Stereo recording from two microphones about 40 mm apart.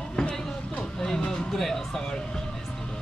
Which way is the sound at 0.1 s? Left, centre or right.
Centre.